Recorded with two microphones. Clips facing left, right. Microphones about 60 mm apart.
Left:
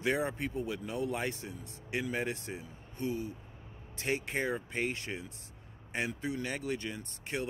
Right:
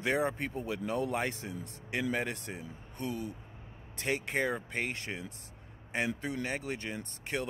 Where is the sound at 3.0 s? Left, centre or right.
Right.